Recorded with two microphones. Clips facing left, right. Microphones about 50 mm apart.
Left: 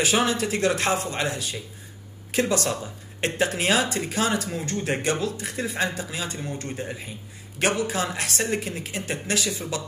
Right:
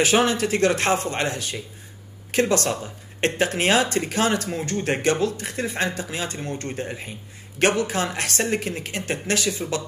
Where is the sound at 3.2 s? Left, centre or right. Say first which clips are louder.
Right 3 dB; right.